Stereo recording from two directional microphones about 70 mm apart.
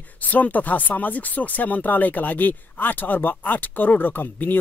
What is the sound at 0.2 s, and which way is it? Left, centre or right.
Speech, left.